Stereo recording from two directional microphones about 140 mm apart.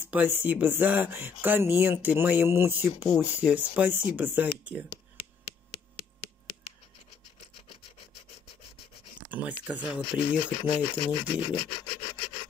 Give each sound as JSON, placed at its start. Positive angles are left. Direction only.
{"t": 0.1, "sound": "speech", "side_deg": -10}
{"t": 9.3, "sound": "speech", "side_deg": -10}
{"t": 10.6, "sound": "rub", "side_deg": 35}